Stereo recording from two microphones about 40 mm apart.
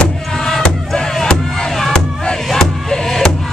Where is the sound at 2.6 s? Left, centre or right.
Centre.